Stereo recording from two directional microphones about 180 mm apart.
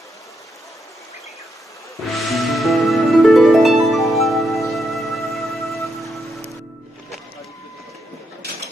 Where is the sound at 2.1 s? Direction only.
Centre (ahead or behind).